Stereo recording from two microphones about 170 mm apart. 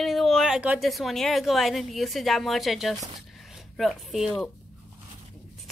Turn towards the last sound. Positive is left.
turn(degrees=0)  # may be behind; listen again after turning